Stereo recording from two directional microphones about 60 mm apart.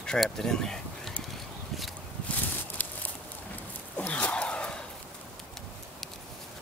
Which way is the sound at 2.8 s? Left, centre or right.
Left.